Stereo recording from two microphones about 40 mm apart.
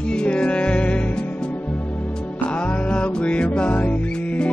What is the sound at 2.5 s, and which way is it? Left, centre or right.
Music, left.